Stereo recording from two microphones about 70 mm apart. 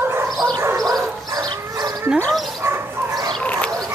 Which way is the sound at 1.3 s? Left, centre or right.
Right.